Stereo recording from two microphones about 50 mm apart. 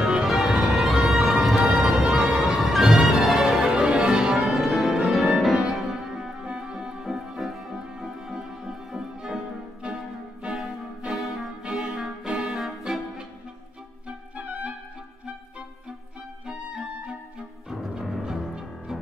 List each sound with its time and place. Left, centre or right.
0.0 s music: centre
3.4 s change ringing: centre
4.5 s music: centre
7.1 s music: centre
12.5 s music: centre
14.0 s clarinet: right
17.6 s music: centre